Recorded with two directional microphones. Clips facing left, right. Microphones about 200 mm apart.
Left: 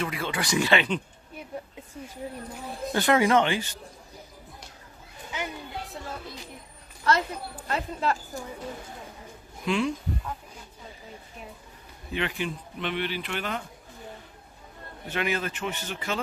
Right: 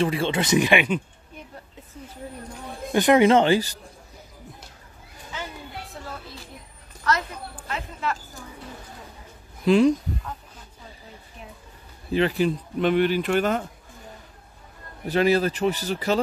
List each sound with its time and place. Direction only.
0.0 s speech: 30° right (ahead or behind); by 1.0 s 10° right (ahead or behind)
2.9 s speech: 15° right (ahead or behind); by 3.8 s 35° right (ahead or behind)
7.6 s speech: 35° left (ahead or behind)
9.7 s speech: 40° right (ahead or behind)
12.1 s speech: 35° right (ahead or behind)
15.0 s speech: 35° right (ahead or behind)